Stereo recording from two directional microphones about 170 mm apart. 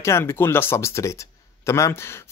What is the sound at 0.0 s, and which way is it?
Speech, 15° left (ahead or behind).